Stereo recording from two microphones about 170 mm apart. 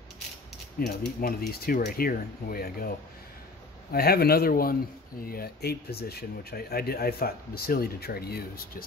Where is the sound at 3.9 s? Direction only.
65° left (ahead or behind).